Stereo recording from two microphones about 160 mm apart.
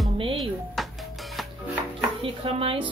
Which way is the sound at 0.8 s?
Centre (ahead or behind).